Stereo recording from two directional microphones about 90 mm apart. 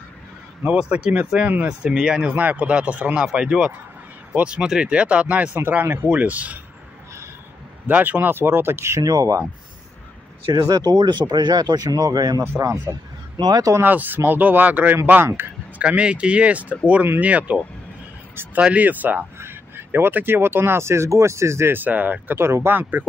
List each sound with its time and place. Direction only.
0.7 s speech: 15° right (ahead or behind)
7.8 s speech: 20° right (ahead or behind); by 9.4 s 40° right (ahead or behind)
10.5 s speech: 40° right (ahead or behind)
13.7 s speech: 20° right (ahead or behind)